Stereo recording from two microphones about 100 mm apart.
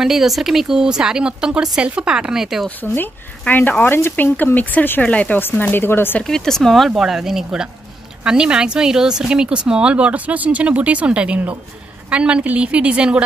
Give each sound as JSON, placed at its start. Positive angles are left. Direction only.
{"t": 0.0, "sound": "speech", "side_deg": -5}
{"t": 2.8, "sound": "speech", "side_deg": 20}
{"t": 6.2, "sound": "speech", "side_deg": 5}